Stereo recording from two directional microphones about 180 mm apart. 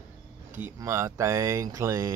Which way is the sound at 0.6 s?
15° right (ahead or behind).